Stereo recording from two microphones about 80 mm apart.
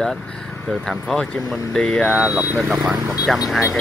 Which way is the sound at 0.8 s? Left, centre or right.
Centre.